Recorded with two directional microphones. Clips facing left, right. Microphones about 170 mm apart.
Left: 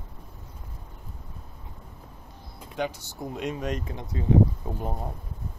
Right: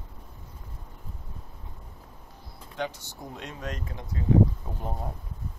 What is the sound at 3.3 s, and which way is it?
Speech, 15° left (ahead or behind).